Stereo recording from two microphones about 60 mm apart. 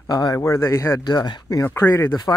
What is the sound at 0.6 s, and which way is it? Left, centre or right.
Speech, left.